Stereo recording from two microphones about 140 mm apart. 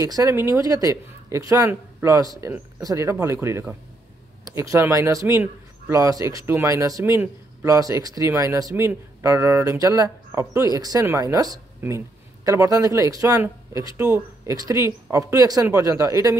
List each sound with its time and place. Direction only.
0.0 s speech: 25° right (ahead or behind)